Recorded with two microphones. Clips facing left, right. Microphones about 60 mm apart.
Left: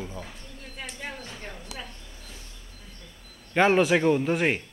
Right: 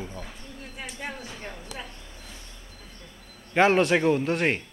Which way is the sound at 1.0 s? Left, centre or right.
Centre.